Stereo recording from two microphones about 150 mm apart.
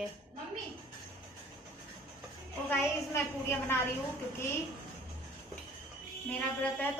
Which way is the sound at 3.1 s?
15° left (ahead or behind).